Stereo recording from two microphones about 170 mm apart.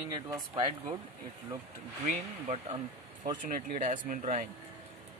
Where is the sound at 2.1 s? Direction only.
40° right (ahead or behind).